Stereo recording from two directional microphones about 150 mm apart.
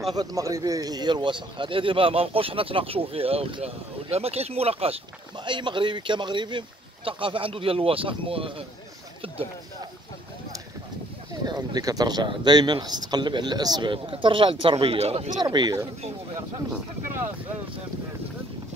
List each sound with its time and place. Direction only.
0.1 s speech: 25° right (ahead or behind)
11.4 s speech: 25° right (ahead or behind); by 15.3 s 45° right (ahead or behind)
15.3 s speech: 30° right (ahead or behind)